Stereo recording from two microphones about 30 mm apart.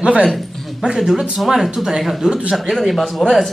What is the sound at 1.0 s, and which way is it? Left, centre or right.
Speech, centre.